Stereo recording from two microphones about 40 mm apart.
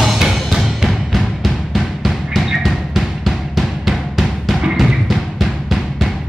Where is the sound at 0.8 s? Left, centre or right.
Centre.